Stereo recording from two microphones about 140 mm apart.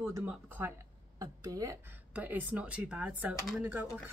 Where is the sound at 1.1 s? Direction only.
25° right (ahead or behind).